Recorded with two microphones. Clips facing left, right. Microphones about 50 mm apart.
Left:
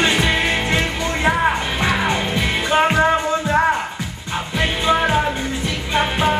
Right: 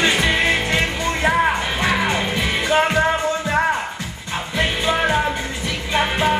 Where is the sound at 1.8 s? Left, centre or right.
Centre.